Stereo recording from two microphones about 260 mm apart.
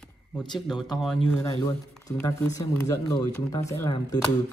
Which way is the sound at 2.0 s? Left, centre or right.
Centre.